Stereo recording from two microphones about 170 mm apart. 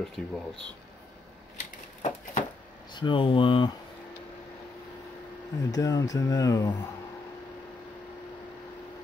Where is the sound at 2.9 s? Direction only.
30° left (ahead or behind).